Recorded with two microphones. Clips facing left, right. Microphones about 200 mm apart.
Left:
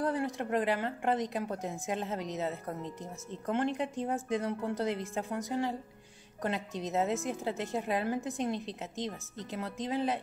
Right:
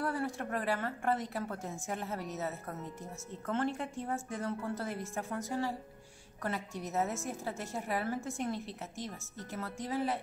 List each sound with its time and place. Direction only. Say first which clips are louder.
0.0 s a woman's voice: left 3 dB; 20° left (ahead or behind)